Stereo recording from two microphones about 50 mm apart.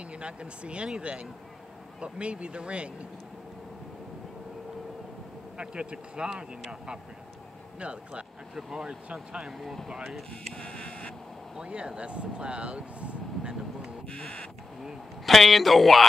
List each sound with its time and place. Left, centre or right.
0.2 s speech: right
5.6 s speech: centre
7.8 s speech: right
8.5 s speech: centre
10.5 s a sound: centre
11.5 s speech: centre
14.0 s a sound: centre
15.2 s speech: centre